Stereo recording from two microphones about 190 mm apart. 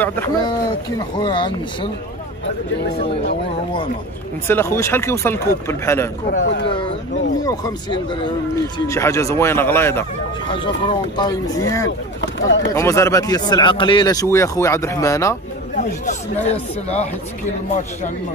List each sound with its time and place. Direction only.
0.4 s speech: 20° left (ahead or behind)
4.5 s speech: 15° left (ahead or behind)
6.4 s speech: 70° left (ahead or behind)
7.4 s speech: 20° left (ahead or behind)
10.6 s speech: 25° left (ahead or behind)
12.2 s speech: 70° left (ahead or behind)
12.7 s speech: 15° left (ahead or behind)
15.8 s speech: 40° left (ahead or behind)